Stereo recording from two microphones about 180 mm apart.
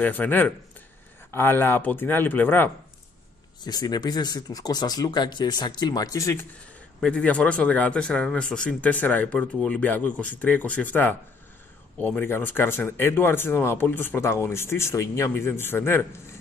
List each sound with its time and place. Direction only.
0.0 s speech: 10° left (ahead or behind)
3.6 s speech: 20° left (ahead or behind)
7.0 s speech: 5° left (ahead or behind)